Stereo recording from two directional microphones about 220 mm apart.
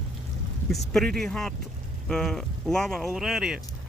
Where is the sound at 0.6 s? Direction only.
Centre (ahead or behind).